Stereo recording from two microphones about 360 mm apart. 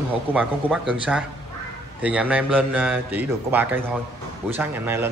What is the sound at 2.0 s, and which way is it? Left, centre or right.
Speech, centre.